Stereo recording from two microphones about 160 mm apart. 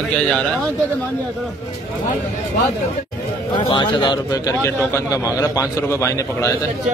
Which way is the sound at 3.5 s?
30° left (ahead or behind).